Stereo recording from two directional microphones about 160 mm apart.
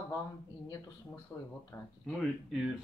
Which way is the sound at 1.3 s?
15° left (ahead or behind).